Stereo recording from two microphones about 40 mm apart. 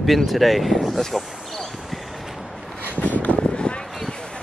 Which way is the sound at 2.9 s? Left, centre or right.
Left.